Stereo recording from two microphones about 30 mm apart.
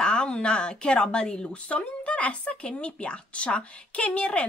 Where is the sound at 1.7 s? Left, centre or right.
Left.